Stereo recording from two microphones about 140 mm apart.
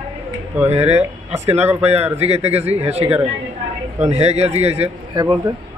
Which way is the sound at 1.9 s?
50° right (ahead or behind).